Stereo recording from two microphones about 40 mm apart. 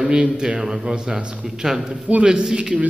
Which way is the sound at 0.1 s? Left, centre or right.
Right.